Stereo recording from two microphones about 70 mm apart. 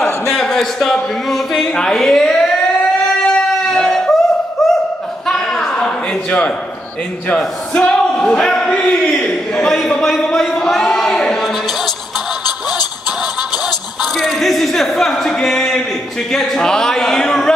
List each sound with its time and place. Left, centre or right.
0.3 s speech: centre
3.3 s dog: centre
4.6 s a sound: centre
7.2 s a man's voice: centre
9.7 s speech: centre
14.1 s speech: centre